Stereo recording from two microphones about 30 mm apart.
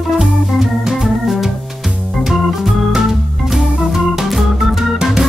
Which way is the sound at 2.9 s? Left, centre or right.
Centre.